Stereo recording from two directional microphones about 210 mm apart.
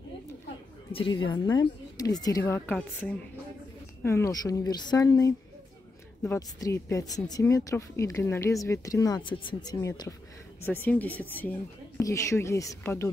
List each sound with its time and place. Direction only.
0.9 s speech: 25° left (ahead or behind)